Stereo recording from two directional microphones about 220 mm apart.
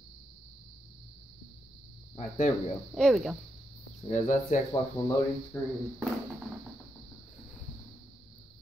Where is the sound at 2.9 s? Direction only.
Centre (ahead or behind).